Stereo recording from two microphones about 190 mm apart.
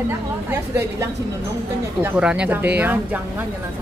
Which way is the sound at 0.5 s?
10° right (ahead or behind).